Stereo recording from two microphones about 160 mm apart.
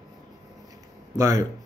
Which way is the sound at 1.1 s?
20° right (ahead or behind).